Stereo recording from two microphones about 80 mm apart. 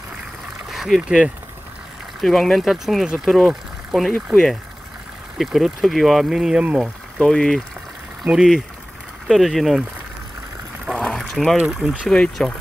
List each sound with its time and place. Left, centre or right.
0.7 s a sound: centre
1.0 s speech: centre
2.1 s speech: centre
5.4 s speech: centre
7.2 s speech: centre
8.2 s speech: centre
11.0 s a sound: centre
11.5 s speech: centre
12.1 s speech: centre